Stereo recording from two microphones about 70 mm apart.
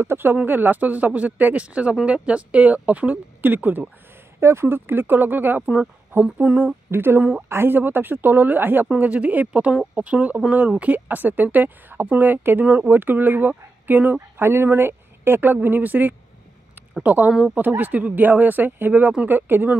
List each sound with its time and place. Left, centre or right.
0.0 s speech: right
4.4 s speech: right
5.7 s speech: centre
6.9 s speech: right
8.9 s speech: centre
17.3 s speech: centre
17.6 s speech: right